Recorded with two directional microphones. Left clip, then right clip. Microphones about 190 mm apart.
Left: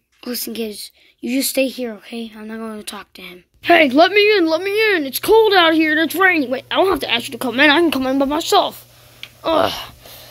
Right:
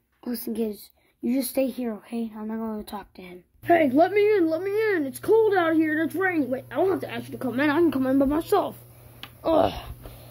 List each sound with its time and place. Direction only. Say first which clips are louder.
0.2 s a woman's voice: left 5 dB; 15° left (ahead or behind)
3.6 s speech: left 8 dB; 25° left (ahead or behind)
7.8 s speech: left 5 dB; 10° left (ahead or behind)
9.4 s gasp: left 5 dB; 5° left (ahead or behind)